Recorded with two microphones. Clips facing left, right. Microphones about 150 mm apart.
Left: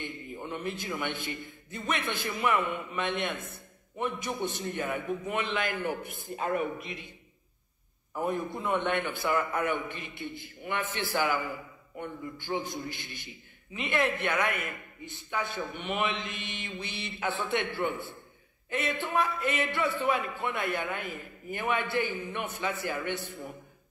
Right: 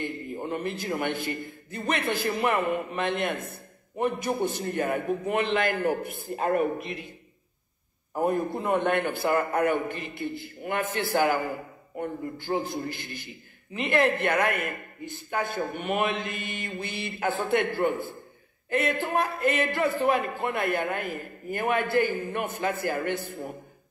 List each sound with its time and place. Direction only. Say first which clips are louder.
0.0 s a sound: right 6 dB; 55° right (ahead or behind)
0.4 s a man's voice: right 4 dB; 40° right (ahead or behind)
8.1 s a man's voice: right 5 dB; 45° right (ahead or behind)